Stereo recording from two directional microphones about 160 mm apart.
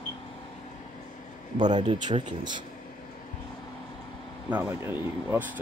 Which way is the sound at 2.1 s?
35° right (ahead or behind).